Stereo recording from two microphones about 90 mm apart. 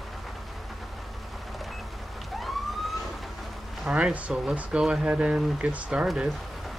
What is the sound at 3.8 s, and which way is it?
Speech, 10° right (ahead or behind).